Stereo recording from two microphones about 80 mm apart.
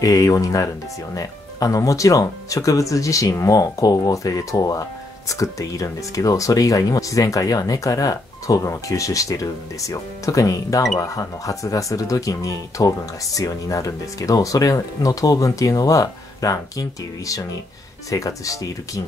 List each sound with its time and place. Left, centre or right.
0.0 s speech: left
18.1 s speech: left